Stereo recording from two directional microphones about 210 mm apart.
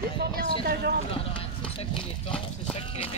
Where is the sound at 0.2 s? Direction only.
50° right (ahead or behind).